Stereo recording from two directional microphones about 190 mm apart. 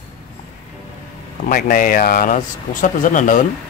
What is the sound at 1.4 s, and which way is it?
Speech, 50° left (ahead or behind).